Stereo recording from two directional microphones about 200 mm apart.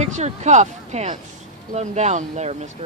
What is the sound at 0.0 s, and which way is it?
Speech, 35° right (ahead or behind).